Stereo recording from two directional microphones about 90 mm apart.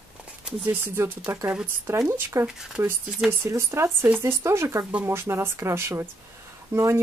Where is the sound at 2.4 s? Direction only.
5° right (ahead or behind).